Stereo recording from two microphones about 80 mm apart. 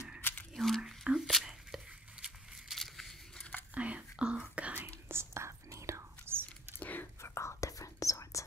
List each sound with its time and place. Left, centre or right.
0.2 s a sound: left
0.6 s whispering: centre
1.0 s whispering: centre
1.3 s a sound: centre
3.7 s whispering: centre
4.8 s whispering: right
6.8 s whispering: left
7.2 s whispering: left